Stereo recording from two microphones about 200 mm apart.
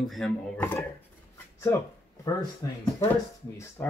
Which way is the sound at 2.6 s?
15° left (ahead or behind).